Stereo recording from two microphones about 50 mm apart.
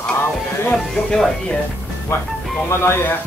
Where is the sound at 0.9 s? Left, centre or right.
Centre.